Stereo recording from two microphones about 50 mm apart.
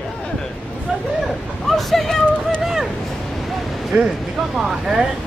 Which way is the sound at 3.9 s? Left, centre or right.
Right.